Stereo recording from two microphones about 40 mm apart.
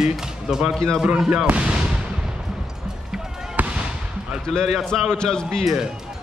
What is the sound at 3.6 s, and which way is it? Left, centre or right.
Basketball bounce, right.